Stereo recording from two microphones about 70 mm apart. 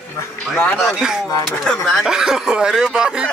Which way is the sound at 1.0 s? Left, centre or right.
Centre.